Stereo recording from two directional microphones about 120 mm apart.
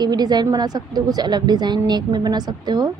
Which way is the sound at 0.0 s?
35° right (ahead or behind).